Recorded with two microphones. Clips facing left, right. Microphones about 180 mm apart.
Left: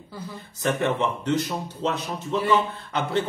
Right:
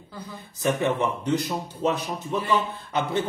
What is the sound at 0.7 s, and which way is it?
Speech, 15° right (ahead or behind).